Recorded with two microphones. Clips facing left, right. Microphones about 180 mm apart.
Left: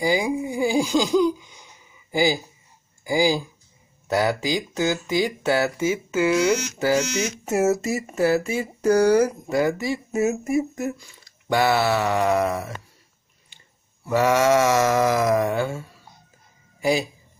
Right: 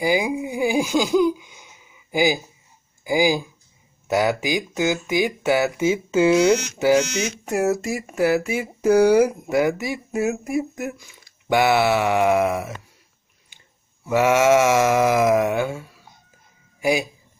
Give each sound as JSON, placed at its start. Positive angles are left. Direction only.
{"t": 0.0, "sound": "sheep", "side_deg": -15}
{"t": 1.5, "sound": "a sound", "side_deg": -5}
{"t": 3.0, "sound": "speech", "side_deg": -15}
{"t": 4.1, "sound": "sheep", "side_deg": -15}
{"t": 5.1, "sound": "speech", "side_deg": -15}
{"t": 7.4, "sound": "speech", "side_deg": 0}
{"t": 8.5, "sound": "sheep", "side_deg": -10}
{"t": 9.9, "sound": "speech", "side_deg": 0}
{"t": 11.4, "sound": "sheep", "side_deg": -10}
{"t": 14.0, "sound": "sheep", "side_deg": -10}